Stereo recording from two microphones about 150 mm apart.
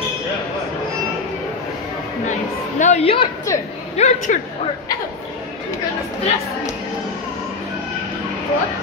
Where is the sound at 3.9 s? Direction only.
55° left (ahead or behind).